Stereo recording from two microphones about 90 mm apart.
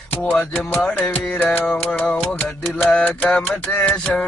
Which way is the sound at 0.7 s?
15° left (ahead or behind).